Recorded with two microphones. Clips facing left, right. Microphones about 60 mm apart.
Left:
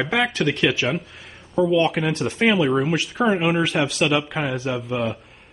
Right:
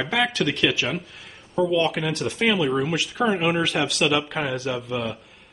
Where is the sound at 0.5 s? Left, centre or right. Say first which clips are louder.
Left 2 dB; left.